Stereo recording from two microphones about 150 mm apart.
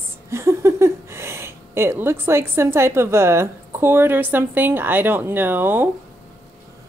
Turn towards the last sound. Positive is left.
turn(degrees=-15)  # may be behind; listen again after turning